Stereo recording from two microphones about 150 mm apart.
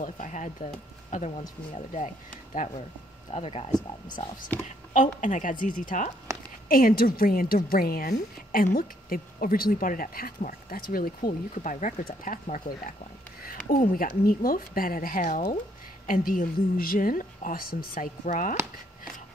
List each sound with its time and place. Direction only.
0.0 s speech: 55° left (ahead or behind)
1.7 s speech: 45° left (ahead or behind)
3.3 s speech: 40° left (ahead or behind)
4.9 s speech: 55° left (ahead or behind)
6.7 s a woman's voice: 75° left (ahead or behind)
13.4 s a woman's voice: 75° left (ahead or behind)